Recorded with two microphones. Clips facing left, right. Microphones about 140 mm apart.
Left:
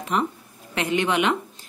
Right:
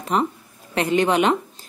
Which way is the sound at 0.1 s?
35° right (ahead or behind).